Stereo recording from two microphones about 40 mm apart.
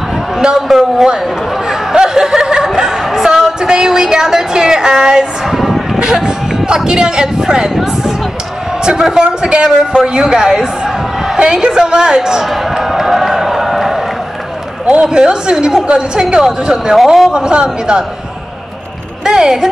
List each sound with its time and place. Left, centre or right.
0.6 s a man's voice: centre
1.7 s chuckle: centre
5.9 s a man's voice: centre
9.2 s a woman's voice: right
12.4 s a sound: centre
15.0 s a woman's voice: right
16.3 s a man's voice: centre
17.3 s a woman's voice: right
19.2 s a man's voice: centre